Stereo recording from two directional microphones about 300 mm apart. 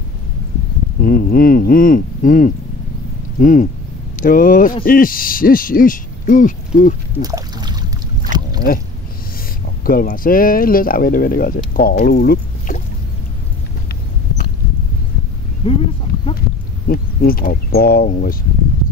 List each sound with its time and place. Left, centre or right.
1.0 s speech: left
7.2 s a sound: centre
8.3 s boat: right
9.8 s speech: left
15.6 s a sound: centre
16.8 s speech: left